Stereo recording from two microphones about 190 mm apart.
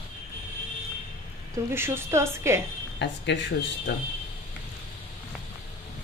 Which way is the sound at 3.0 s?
65° left (ahead or behind).